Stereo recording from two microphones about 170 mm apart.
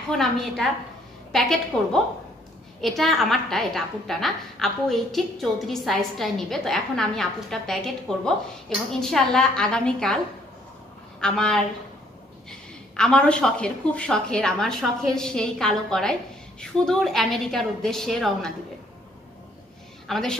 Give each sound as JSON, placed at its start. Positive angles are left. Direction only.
{"t": 0.1, "sound": "a woman's voice", "side_deg": 0}
{"t": 3.0, "sound": "a woman's voice", "side_deg": 0}
{"t": 20.1, "sound": "a woman's voice", "side_deg": 0}